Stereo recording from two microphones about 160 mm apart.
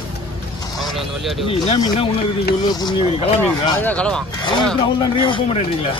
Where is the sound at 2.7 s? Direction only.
25° left (ahead or behind).